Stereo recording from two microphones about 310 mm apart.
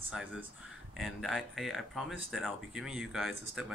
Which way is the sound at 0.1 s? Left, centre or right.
Centre.